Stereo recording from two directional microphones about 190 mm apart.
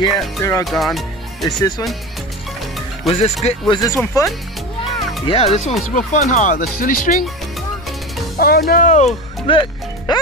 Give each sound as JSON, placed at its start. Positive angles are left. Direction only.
{"t": 0.4, "sound": "speech", "side_deg": 15}
{"t": 0.7, "sound": "speech", "side_deg": 0}
{"t": 3.1, "sound": "speech", "side_deg": 35}
{"t": 5.2, "sound": "speech", "side_deg": 30}
{"t": 8.4, "sound": "speech", "side_deg": 50}